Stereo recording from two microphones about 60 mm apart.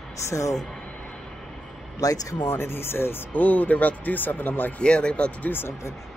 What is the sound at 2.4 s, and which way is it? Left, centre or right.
Speech, left.